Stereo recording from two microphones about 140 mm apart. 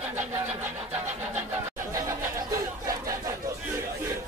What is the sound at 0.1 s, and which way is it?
Vehicle, 15° right (ahead or behind).